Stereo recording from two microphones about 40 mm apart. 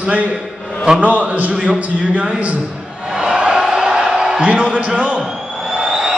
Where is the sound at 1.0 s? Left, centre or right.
Right.